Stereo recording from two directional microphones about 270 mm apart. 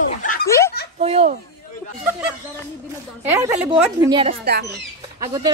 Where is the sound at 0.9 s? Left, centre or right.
Right.